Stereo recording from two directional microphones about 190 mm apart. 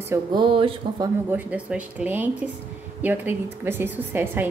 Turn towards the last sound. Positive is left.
turn(degrees=-10)  # may be behind; listen again after turning